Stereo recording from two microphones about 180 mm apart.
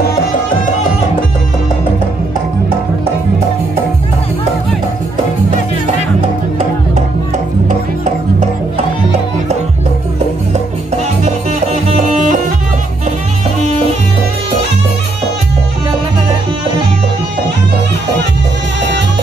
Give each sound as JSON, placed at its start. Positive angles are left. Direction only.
{"t": 11.9, "sound": "music", "side_deg": -45}